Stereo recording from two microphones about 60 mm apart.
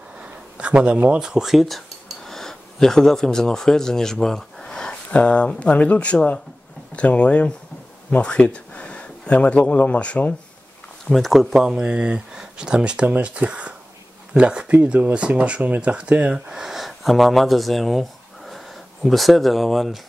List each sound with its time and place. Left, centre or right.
0.2 s a sound: centre
1.2 s speech: centre; by 10.3 s left
11.1 s speech: centre